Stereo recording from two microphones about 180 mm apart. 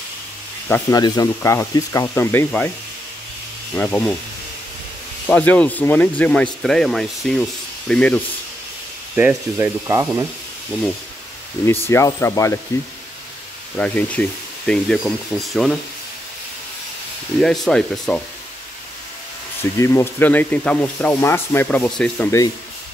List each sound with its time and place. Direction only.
0.7 s speech: 15° left (ahead or behind)
3.7 s speech: 5° left (ahead or behind)
5.2 s speech: 10° left (ahead or behind)
9.1 s speech: 10° right (ahead or behind)
11.6 s speech: 15° left (ahead or behind)
13.7 s speech: 5° left (ahead or behind)
17.4 s speech: centre (ahead or behind)
19.8 s speech: 15° left (ahead or behind)